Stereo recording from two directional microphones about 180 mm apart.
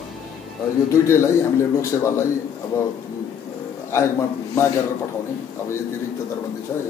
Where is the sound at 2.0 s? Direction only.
15° left (ahead or behind).